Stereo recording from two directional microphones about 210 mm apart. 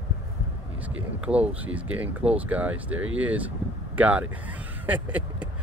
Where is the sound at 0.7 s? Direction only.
5° right (ahead or behind).